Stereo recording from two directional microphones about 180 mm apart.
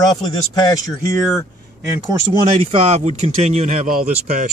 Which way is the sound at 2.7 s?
40° right (ahead or behind).